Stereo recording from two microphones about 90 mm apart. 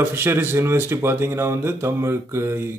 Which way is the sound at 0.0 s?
25° right (ahead or behind).